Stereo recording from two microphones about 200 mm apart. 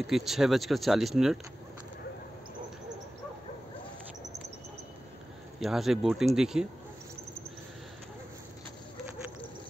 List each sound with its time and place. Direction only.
0.0 s speech: centre (ahead or behind)
5.6 s speech: centre (ahead or behind)